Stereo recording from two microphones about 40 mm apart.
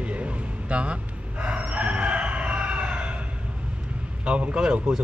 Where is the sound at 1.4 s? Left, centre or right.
Right.